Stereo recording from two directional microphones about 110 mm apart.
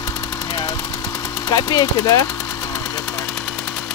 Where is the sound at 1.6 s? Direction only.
35° left (ahead or behind).